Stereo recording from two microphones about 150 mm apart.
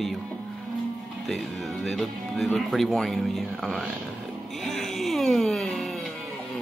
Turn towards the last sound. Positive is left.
turn(degrees=0)  # may be behind; listen again after turning